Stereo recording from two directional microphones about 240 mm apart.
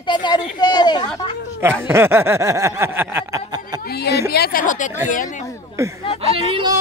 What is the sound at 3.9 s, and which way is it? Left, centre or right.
A woman's voice, left.